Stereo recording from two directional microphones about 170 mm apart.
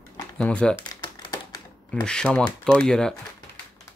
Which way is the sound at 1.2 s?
20° left (ahead or behind).